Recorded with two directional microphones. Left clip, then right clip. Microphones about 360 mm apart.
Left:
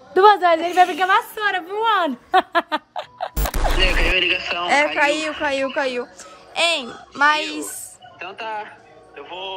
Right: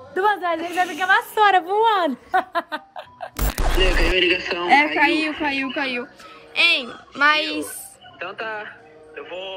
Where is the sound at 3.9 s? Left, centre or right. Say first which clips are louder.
Even; centre.